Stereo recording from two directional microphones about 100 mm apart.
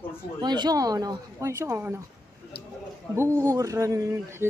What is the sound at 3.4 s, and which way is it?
Speech, 35° right (ahead or behind).